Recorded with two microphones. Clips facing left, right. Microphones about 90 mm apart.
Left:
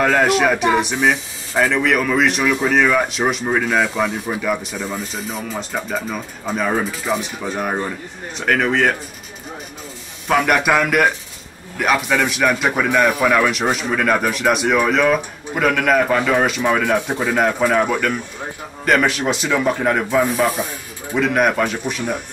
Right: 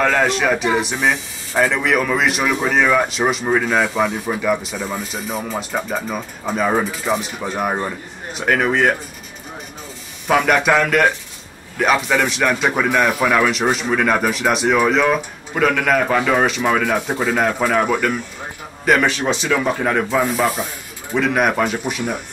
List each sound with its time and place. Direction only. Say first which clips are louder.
0.0 s speech: left 2 dB; 5° left (ahead or behind)
10.2 s speech: right 1 dB; centre (ahead or behind)
17.3 s speech: left 2 dB; centre (ahead or behind)
18.9 s speech: even; centre (ahead or behind)
20.3 s speech: left 1 dB; 15° right (ahead or behind)
21.1 s speech: even; centre (ahead or behind)